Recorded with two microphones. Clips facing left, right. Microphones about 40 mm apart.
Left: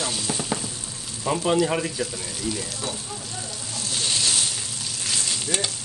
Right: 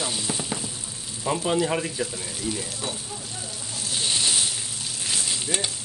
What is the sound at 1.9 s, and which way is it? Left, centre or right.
Speech, right.